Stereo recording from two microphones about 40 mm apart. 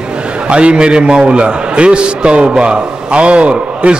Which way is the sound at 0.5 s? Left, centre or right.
Right.